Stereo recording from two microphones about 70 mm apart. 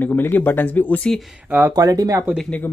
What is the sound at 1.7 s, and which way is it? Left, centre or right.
Speech, right.